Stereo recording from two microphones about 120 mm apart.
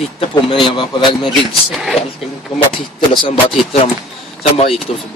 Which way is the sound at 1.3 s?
Centre (ahead or behind).